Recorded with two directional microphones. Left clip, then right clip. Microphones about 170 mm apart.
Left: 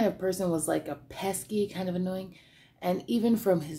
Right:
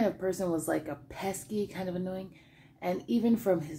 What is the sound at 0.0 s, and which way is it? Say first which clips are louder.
A woman's voice: left 2 dB; 10° left (ahead or behind).